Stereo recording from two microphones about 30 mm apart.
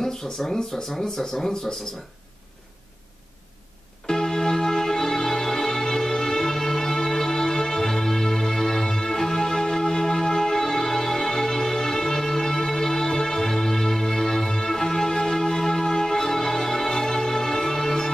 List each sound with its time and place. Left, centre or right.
0.0 s speech: centre
4.0 s music: centre